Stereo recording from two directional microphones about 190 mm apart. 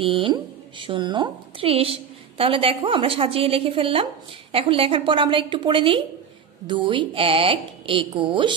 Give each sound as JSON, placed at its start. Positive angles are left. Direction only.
{"t": 0.0, "sound": "speech", "side_deg": -30}